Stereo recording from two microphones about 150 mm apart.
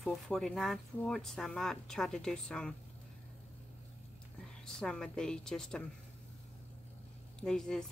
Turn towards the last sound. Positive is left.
turn(degrees=5)  # may be behind; listen again after turning